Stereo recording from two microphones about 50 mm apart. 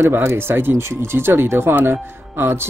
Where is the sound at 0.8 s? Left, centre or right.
Right.